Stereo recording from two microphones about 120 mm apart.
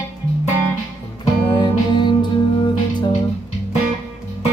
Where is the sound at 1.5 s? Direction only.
40° left (ahead or behind).